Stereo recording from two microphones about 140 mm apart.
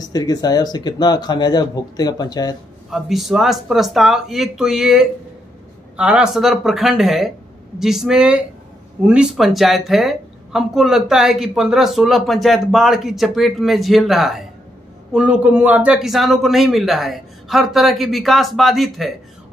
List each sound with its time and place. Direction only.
0.0 s speech: 25° left (ahead or behind)
2.9 s a woman's voice: centre (ahead or behind)